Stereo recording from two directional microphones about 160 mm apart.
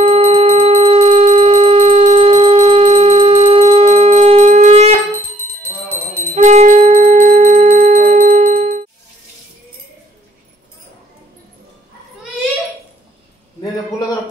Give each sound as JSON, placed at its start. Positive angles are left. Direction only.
{"t": 0.0, "sound": "a sound", "side_deg": -40}
{"t": 3.6, "sound": "shofar", "side_deg": -40}
{"t": 6.3, "sound": "music", "side_deg": -45}